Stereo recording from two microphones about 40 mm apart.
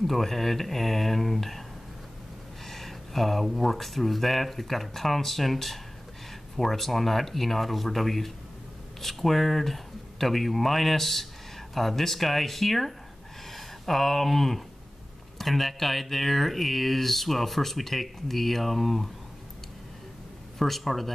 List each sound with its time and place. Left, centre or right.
0.0 s speech: centre
2.6 s speech: centre
20.5 s speech: centre